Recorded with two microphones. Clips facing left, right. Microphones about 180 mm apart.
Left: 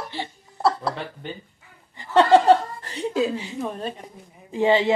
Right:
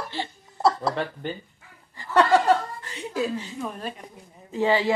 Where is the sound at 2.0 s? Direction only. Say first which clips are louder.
Left 4 dB; 25° left (ahead or behind).